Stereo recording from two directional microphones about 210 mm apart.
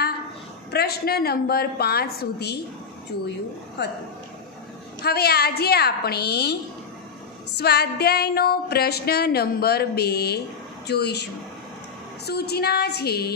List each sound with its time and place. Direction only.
0.7 s music: 50° left (ahead or behind)
3.8 s speech: 55° left (ahead or behind)
5.0 s music: 50° left (ahead or behind)
12.3 s music: 50° left (ahead or behind)